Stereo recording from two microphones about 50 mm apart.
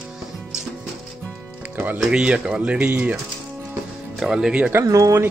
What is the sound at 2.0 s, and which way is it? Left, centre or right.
Speech, centre.